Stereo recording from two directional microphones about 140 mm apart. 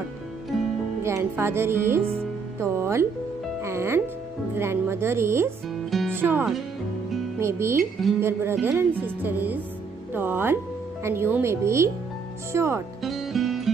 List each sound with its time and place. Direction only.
0.5 s music: centre (ahead or behind)
1.0 s speech: 20° right (ahead or behind)
5.9 s music: centre (ahead or behind)
6.1 s speech: 15° right (ahead or behind)
13.0 s music: centre (ahead or behind)